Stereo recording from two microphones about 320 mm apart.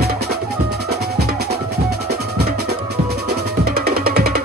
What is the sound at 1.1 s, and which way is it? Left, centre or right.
Music, right.